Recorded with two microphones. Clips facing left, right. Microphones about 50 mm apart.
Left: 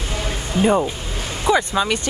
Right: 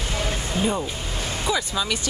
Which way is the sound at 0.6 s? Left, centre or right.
Left.